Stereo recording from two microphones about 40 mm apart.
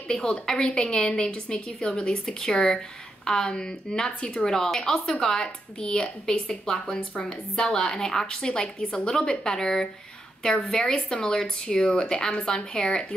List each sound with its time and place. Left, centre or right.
0.1 s a woman's voice: centre